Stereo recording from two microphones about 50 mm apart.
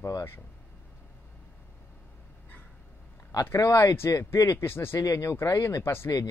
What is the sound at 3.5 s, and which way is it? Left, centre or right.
Speech, left.